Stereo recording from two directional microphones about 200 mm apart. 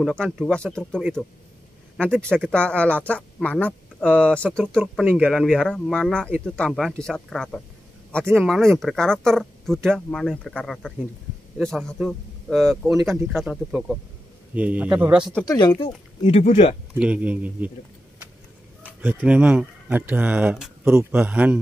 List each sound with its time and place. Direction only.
0.0 s a man's voice: 5° left (ahead or behind)
15.4 s speech: 20° left (ahead or behind)
17.0 s a man's voice: 5° right (ahead or behind)
18.8 s a man's voice: 10° right (ahead or behind)